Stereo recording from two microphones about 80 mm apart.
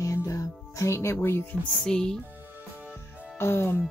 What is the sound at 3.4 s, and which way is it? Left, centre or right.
Speech, left.